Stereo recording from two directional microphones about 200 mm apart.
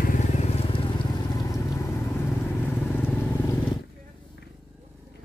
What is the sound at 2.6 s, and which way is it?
Vehicle, 10° left (ahead or behind).